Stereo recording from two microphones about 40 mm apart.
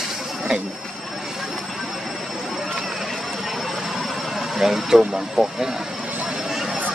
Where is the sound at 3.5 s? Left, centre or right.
Centre.